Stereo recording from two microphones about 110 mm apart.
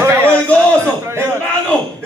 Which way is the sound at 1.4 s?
10° left (ahead or behind).